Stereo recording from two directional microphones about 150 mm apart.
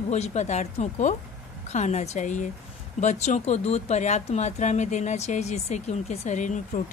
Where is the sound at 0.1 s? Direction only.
50° left (ahead or behind).